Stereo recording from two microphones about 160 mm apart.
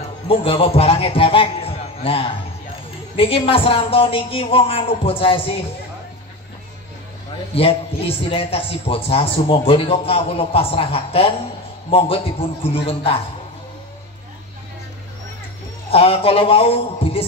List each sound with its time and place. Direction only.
0.3 s a man's voice: 35° left (ahead or behind)
7.5 s a man's voice: 35° left (ahead or behind)
15.9 s a man's voice: 35° left (ahead or behind)